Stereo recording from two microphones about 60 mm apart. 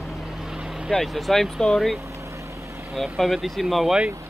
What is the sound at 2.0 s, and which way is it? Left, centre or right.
Vehicle, right.